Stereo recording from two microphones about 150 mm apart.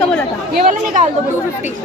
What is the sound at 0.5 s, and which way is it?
Speech, 60° right (ahead or behind).